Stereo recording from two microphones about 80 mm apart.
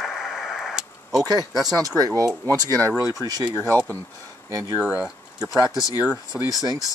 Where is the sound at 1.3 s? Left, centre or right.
Right.